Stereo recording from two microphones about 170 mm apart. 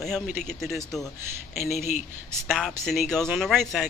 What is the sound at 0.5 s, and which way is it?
Speech, centre (ahead or behind).